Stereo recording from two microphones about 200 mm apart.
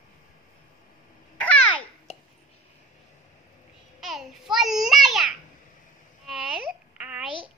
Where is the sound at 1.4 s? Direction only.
5° left (ahead or behind).